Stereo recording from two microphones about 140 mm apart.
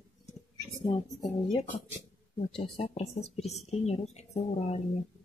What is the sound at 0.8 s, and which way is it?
Speech, 35° left (ahead or behind).